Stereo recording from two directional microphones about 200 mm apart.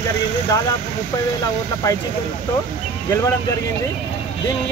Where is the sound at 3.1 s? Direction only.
15° left (ahead or behind).